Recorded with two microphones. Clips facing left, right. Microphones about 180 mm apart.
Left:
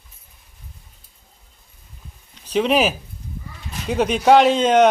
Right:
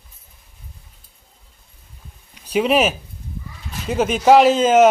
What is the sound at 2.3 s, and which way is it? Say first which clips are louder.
Speech: right 1 dB; 10° right (ahead or behind).